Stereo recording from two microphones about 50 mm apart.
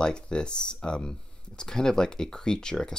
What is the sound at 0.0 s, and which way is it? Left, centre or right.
Speech, centre.